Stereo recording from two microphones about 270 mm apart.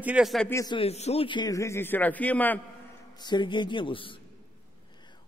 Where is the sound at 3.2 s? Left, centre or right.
Centre.